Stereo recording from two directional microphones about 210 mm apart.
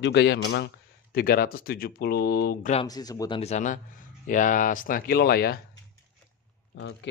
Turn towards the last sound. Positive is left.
turn(degrees=60)  # may be behind; listen again after turning